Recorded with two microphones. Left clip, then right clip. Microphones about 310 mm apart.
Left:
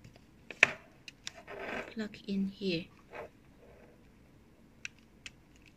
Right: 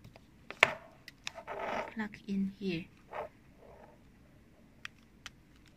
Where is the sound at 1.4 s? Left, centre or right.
Right.